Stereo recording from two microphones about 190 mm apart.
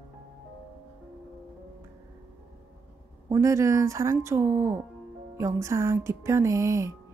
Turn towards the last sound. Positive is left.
turn(degrees=-15)  # may be behind; listen again after turning